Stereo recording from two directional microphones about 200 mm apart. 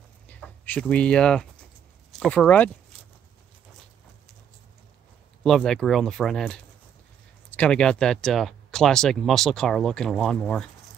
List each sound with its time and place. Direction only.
0.3 s speech: 5° left (ahead or behind)
5.4 s speech: centre (ahead or behind)